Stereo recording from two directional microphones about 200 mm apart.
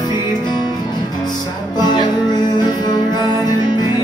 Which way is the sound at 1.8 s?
20° left (ahead or behind).